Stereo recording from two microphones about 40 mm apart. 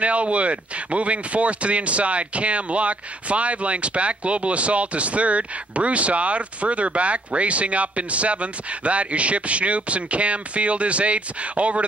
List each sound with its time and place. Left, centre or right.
0.0 s speech: right